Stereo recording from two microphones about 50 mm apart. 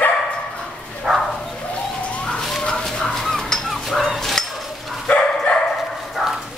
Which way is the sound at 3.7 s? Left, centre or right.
Centre.